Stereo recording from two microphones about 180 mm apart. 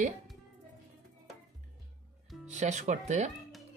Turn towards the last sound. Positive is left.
turn(degrees=-40)  # may be behind; listen again after turning